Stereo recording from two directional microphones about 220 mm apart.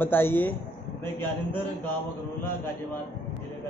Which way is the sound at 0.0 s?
10° left (ahead or behind).